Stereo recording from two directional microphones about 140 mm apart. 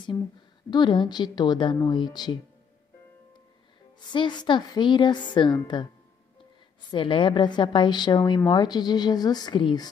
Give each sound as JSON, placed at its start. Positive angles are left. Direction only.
{"t": 0.7, "sound": "a woman's voice", "side_deg": 35}
{"t": 4.1, "sound": "a woman's voice", "side_deg": 35}
{"t": 6.9, "sound": "a woman's voice", "side_deg": 35}